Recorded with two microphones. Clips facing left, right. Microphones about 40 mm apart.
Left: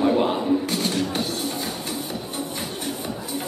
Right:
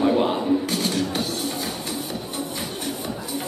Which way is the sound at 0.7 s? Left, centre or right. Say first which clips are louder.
Even; left.